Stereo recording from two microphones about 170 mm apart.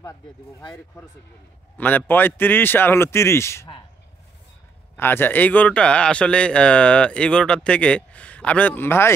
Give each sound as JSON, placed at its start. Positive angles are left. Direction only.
{"t": 0.0, "sound": "speech", "side_deg": 20}
{"t": 4.9, "sound": "speech", "side_deg": 10}